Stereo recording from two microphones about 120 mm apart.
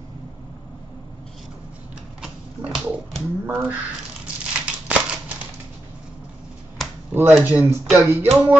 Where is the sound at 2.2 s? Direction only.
5° right (ahead or behind).